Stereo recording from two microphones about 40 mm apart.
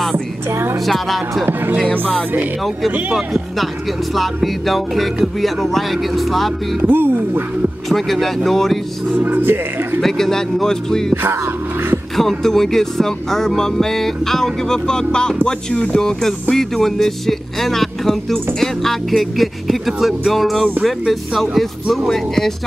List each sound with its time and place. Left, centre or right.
0.8 s speech: centre
1.8 s speech: left
3.1 s speech: centre
4.6 s speech: centre
6.9 s speech: right
7.9 s speech: centre
9.1 s speech: right
9.9 s speech: centre
12.2 s speech: centre
15.4 s speech: left
16.0 s speech: centre